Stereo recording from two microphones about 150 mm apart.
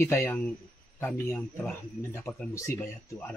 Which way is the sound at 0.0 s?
15° left (ahead or behind).